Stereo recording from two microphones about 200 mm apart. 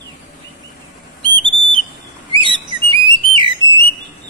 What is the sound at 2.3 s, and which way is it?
Bird, 25° right (ahead or behind).